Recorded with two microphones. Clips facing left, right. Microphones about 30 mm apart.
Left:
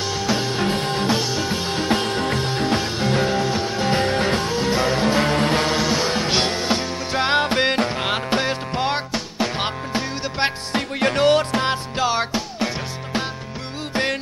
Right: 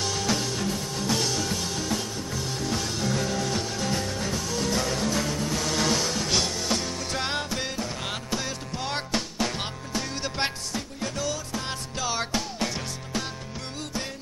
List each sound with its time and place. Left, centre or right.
0.0 s music: left
0.5 s music: left
1.2 s music: left
2.0 s music: left
4.6 s music: left
5.8 s music: centre
6.0 s music: left
8.0 s music: left
10.7 s music: left
11.7 s music: left